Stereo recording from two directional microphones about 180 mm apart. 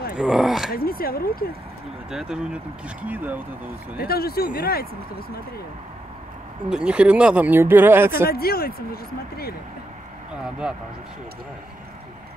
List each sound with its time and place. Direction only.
0.2 s speech: centre (ahead or behind)
0.7 s speech: 55° left (ahead or behind)
2.0 s speech: 5° right (ahead or behind)
4.0 s speech: 60° left (ahead or behind)
6.7 s speech: 5° right (ahead or behind)
8.3 s speech: 60° left (ahead or behind)
10.6 s speech: 5° right (ahead or behind)